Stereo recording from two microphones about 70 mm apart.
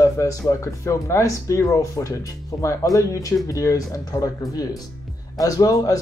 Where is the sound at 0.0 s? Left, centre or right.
Left.